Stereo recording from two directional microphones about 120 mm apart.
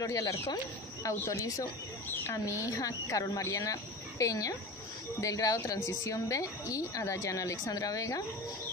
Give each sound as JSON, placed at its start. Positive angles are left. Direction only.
{"t": 0.0, "sound": "a woman's voice", "side_deg": 25}